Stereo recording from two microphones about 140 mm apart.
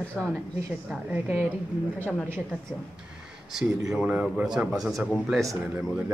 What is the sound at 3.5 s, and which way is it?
Speech, 5° right (ahead or behind).